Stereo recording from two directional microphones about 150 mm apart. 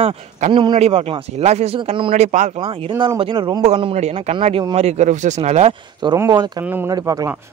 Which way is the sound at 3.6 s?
40° right (ahead or behind).